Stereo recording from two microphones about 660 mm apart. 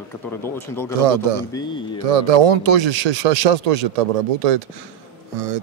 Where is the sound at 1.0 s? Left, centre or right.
Right.